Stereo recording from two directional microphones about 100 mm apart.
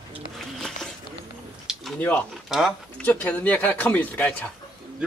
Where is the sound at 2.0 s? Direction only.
15° left (ahead or behind).